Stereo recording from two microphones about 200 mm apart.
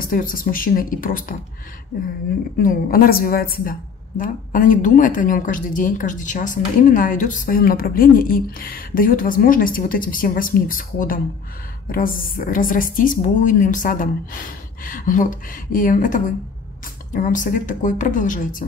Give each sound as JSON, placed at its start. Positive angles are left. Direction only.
{"t": 0.0, "sound": "speech", "side_deg": 45}
{"t": 2.5, "sound": "a woman's voice", "side_deg": 45}